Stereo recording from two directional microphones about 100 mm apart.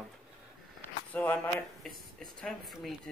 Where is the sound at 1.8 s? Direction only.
5° left (ahead or behind).